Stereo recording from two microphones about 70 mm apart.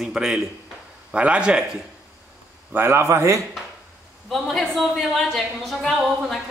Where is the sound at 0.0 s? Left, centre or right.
Centre.